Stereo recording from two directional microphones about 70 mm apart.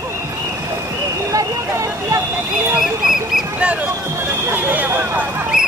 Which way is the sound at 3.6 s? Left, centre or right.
Centre.